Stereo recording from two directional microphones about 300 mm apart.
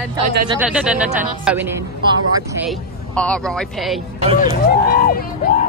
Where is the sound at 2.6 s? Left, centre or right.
Centre.